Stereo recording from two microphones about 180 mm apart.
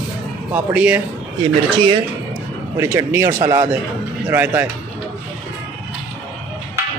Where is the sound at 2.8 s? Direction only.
15° right (ahead or behind).